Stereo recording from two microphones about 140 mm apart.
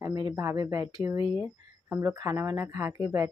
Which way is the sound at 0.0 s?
25° right (ahead or behind).